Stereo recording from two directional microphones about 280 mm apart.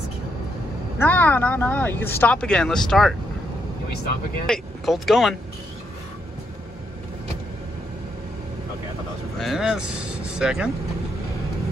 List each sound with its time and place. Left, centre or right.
0.9 s speech: centre
4.5 s speech: centre
9.4 s speech: centre